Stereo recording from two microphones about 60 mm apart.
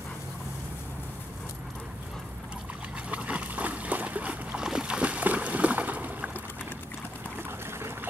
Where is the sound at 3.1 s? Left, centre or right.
Right.